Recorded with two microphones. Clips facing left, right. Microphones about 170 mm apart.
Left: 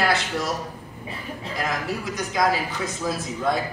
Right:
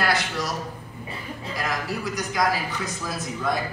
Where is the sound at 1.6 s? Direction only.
25° left (ahead or behind).